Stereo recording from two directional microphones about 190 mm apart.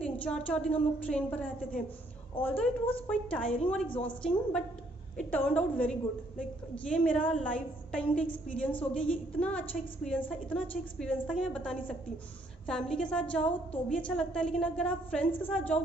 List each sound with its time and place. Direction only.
0.0 s a woman's voice: 5° left (ahead or behind)